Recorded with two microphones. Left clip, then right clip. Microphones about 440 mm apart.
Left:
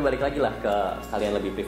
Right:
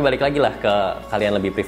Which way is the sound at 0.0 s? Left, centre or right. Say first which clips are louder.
Right 6 dB; right.